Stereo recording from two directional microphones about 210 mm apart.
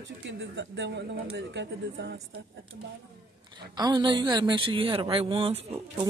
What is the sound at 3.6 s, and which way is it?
A woman's voice, 20° right (ahead or behind).